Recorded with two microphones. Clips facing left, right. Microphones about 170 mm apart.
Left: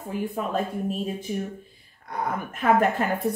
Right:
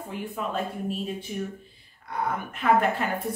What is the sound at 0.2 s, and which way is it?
A woman's voice, 45° left (ahead or behind).